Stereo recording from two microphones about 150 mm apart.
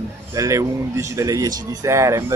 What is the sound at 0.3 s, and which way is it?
Speech, 20° right (ahead or behind).